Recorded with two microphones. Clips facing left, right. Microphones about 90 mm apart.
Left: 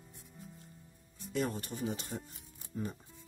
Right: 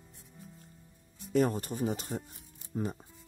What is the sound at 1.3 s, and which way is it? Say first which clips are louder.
Speech: right 7 dB; 40° right (ahead or behind).